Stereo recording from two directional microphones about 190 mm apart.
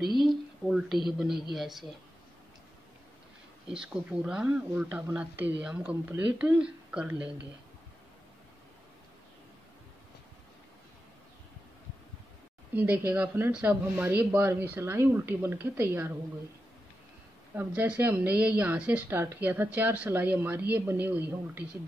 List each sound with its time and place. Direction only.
0.2 s a woman's voice: centre (ahead or behind)
3.6 s a woman's voice: 5° right (ahead or behind)
12.7 s a woman's voice: 10° right (ahead or behind)
17.6 s a woman's voice: 10° right (ahead or behind)